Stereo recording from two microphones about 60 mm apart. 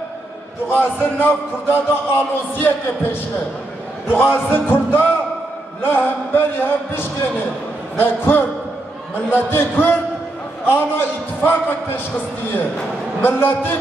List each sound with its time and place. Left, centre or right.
0.7 s speech: left
13.2 s speech: left